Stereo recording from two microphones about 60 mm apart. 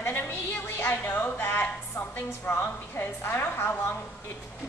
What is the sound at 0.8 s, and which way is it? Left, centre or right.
Speech, left.